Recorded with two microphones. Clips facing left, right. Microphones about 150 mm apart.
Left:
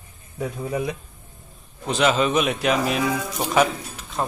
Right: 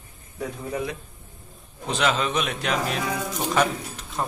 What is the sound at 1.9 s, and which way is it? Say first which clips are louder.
A man's voice: left 4 dB; 5° left (ahead or behind).